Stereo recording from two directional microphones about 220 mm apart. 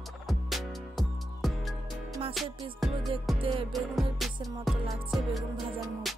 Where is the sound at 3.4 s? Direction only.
25° right (ahead or behind).